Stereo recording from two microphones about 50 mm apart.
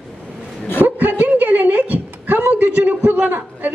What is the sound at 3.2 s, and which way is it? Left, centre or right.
Speech, right.